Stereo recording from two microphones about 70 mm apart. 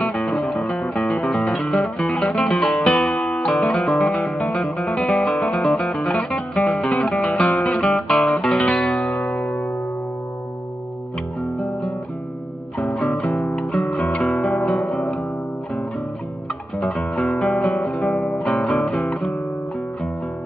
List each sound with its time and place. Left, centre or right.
0.0 s music: centre
3.2 s guitar: centre
3.7 s music: centre
6.3 s guitar: centre
8.7 s music: centre
12.7 s music: centre
16.8 s guitar: centre
18.4 s music: centre
18.9 s guitar: centre